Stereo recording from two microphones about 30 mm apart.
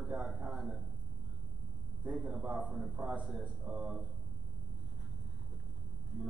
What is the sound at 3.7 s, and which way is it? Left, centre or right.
Speech, right.